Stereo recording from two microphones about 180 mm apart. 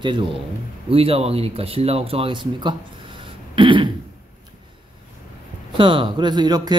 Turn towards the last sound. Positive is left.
turn(degrees=-20)  # may be behind; listen again after turning